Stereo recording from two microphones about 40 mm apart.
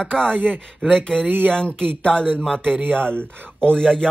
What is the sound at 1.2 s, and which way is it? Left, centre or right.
Speech, right.